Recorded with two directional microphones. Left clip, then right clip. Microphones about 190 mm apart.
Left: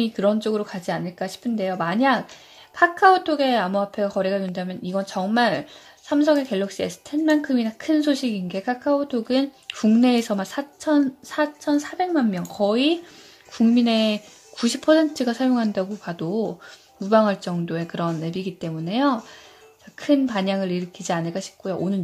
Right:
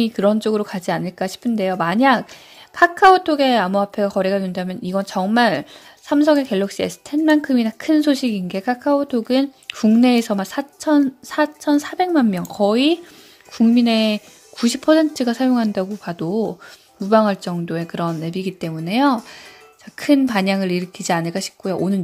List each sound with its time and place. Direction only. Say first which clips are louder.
0.0 s speech: right 4 dB; 25° right (ahead or behind)